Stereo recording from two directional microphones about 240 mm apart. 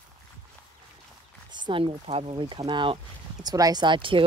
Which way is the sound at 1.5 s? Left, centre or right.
Centre.